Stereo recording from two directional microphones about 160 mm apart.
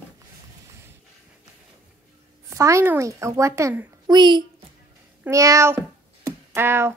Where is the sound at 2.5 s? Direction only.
20° right (ahead or behind).